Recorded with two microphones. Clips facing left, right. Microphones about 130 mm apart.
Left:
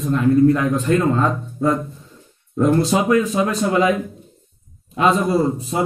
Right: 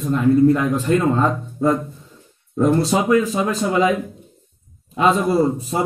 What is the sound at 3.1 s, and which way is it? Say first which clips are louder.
Speech: even; centre (ahead or behind).